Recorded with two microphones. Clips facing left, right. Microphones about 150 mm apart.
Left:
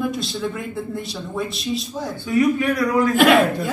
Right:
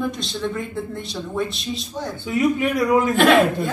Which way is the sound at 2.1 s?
20° right (ahead or behind).